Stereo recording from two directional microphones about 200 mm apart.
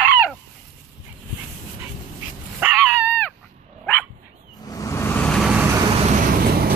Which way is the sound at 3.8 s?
5° left (ahead or behind).